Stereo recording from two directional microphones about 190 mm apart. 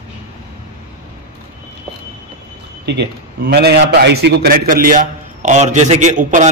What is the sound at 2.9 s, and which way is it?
A man's voice, 60° right (ahead or behind).